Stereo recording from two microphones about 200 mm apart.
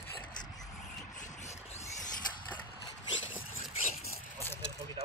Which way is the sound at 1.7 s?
20° left (ahead or behind).